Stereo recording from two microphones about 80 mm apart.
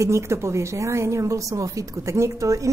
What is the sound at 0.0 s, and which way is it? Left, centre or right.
A woman's voice, right.